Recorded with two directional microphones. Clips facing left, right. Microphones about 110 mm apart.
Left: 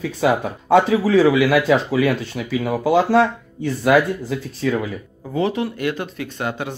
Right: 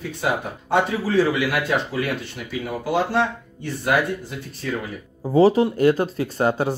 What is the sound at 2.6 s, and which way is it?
Speech, 90° left.